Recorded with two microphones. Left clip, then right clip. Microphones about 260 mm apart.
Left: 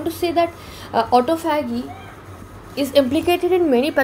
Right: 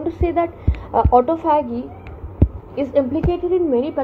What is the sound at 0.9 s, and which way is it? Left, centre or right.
Speech, left.